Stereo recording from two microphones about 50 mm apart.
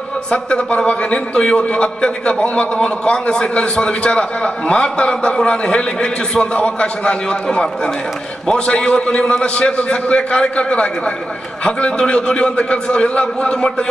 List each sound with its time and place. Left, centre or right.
0.3 s a man's voice: centre